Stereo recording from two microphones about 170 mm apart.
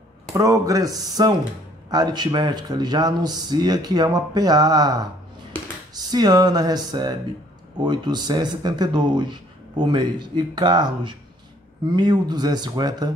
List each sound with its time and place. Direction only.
0.3 s speech: 20° right (ahead or behind)